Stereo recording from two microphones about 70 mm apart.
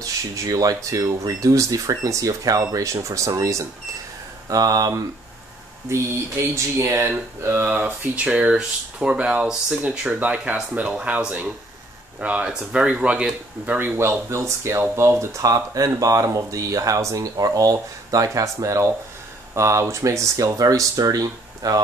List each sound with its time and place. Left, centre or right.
0.0 s speech: right
5.9 s speech: right
7.6 s speech: right
8.3 s speech: centre
13.7 s speech: right